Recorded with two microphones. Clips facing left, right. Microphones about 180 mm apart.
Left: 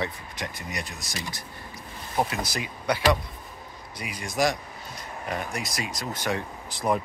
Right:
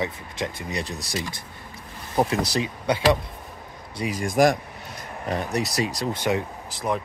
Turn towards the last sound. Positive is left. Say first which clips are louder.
# left 1 dB
turn(degrees=0)  # may be behind; listen again after turning